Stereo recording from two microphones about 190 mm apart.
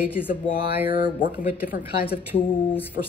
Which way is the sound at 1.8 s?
10° right (ahead or behind).